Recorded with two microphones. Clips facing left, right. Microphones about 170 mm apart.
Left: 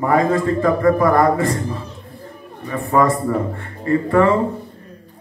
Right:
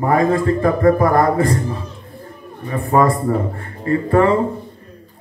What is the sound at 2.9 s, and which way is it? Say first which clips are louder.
Speech: right 1 dB; 25° right (ahead or behind).